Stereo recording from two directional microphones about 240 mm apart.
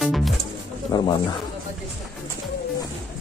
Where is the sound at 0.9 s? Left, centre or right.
Centre.